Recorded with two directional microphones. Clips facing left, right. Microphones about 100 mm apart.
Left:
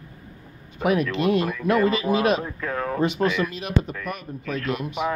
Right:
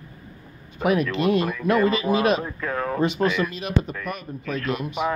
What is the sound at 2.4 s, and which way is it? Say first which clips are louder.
Speech: right 1 dB; 35° right (ahead or behind).